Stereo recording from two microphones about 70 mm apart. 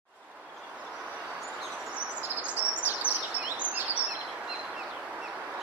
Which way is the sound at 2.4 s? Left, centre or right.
Right.